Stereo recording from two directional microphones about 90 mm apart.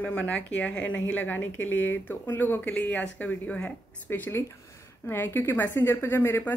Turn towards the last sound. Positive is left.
turn(degrees=25)  # may be behind; listen again after turning